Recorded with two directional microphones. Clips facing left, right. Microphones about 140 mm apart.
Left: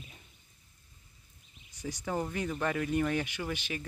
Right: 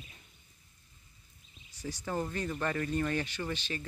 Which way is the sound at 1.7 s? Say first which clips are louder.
Left 2 dB; 15° left (ahead or behind).